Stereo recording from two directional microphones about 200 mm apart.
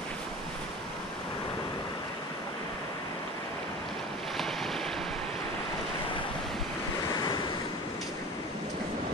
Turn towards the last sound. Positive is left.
turn(degrees=20)  # may be behind; listen again after turning